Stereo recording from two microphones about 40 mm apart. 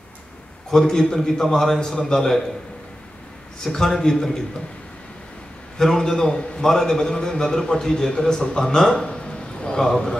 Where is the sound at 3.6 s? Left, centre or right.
Centre.